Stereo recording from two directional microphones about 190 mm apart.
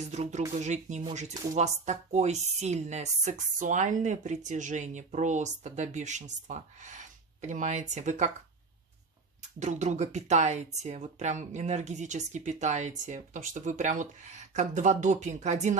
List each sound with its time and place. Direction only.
0.0 s speech: 35° right (ahead or behind)
9.6 s speech: 40° right (ahead or behind)